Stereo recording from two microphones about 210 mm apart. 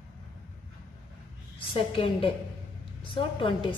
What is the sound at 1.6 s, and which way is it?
A woman's voice, 25° left (ahead or behind).